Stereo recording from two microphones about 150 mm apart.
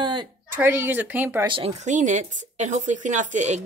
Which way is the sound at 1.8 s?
55° right (ahead or behind).